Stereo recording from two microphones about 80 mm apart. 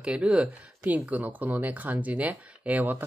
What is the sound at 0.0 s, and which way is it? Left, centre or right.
Speech, centre.